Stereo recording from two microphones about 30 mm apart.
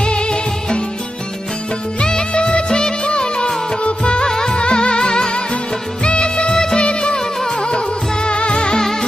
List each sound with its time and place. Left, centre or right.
0.0 s music: left
2.0 s music: left
4.3 s music: centre
4.6 s music: left
6.0 s music of bollywood: left
6.8 s music: left